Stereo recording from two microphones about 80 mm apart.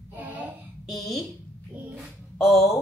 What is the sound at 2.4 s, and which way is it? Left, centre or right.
Speech, centre.